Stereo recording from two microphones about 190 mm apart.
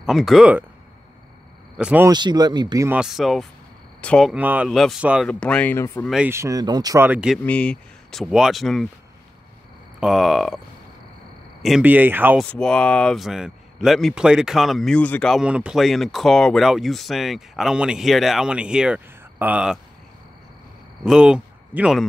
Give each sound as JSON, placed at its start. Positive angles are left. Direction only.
{"t": 0.0, "sound": "speech", "side_deg": 0}
{"t": 1.8, "sound": "speech", "side_deg": -5}
{"t": 2.0, "sound": "speech", "side_deg": -20}
{"t": 2.9, "sound": "speech", "side_deg": -5}
{"t": 4.3, "sound": "speech", "side_deg": -10}
{"t": 6.1, "sound": "speech", "side_deg": -10}
{"t": 7.4, "sound": "speech", "side_deg": 5}
{"t": 9.9, "sound": "speech", "side_deg": 0}
{"t": 11.6, "sound": "speech", "side_deg": -5}
{"t": 12.4, "sound": "speech", "side_deg": 5}
{"t": 21.0, "sound": "speech", "side_deg": -5}